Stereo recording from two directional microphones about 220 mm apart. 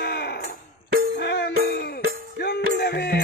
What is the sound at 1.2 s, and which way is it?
Music, 50° left (ahead or behind).